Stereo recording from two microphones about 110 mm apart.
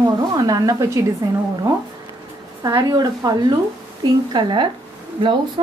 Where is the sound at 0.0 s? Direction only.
35° right (ahead or behind).